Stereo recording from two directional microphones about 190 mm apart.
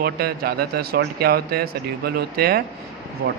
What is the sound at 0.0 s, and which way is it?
A man's voice, 55° right (ahead or behind).